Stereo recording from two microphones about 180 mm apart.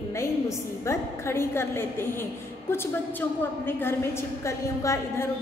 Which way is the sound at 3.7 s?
10° left (ahead or behind).